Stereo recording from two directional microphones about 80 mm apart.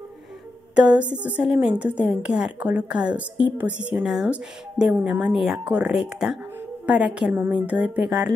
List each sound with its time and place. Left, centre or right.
0.7 s speech: centre
4.0 s speech: centre